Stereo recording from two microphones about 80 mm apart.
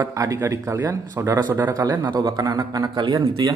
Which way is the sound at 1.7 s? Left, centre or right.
Right.